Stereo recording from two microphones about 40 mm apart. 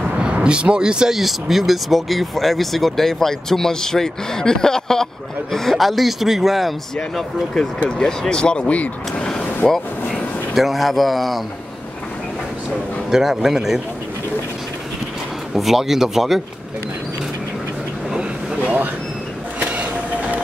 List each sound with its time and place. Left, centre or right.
0.2 s speech: right
1.1 s speech: centre
7.6 s speech: centre
8.0 s speech: centre
8.6 s speech: left
9.6 s speech: centre
13.1 s speech: centre
15.5 s speech: centre
19.6 s vehicle: right